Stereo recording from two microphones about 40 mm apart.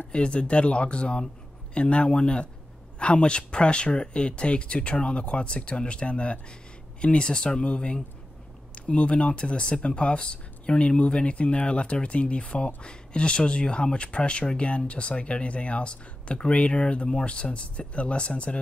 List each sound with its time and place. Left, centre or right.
0.1 s speech: left